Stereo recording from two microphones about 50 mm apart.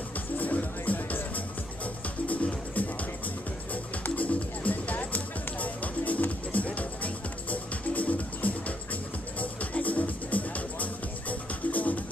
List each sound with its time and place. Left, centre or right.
0.4 s music: left